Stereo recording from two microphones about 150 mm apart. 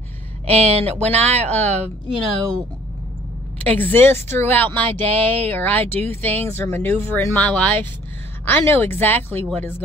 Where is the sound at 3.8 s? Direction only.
15° left (ahead or behind).